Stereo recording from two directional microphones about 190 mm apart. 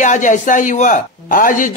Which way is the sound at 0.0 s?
40° left (ahead or behind).